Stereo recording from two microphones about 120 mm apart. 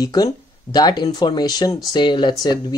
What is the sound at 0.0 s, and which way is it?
Speech, 30° left (ahead or behind).